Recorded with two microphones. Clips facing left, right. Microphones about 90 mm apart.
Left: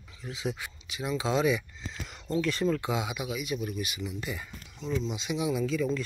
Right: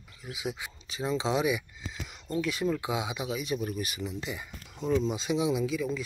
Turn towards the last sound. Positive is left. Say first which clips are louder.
# left 2 dB
turn(degrees=-5)  # may be behind; listen again after turning